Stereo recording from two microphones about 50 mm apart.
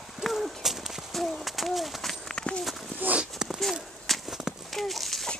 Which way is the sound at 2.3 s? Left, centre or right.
Centre.